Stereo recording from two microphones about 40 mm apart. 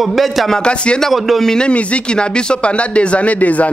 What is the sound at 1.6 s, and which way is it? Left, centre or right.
Speech, left.